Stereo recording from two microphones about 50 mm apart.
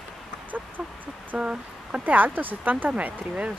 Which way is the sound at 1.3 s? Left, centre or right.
Right.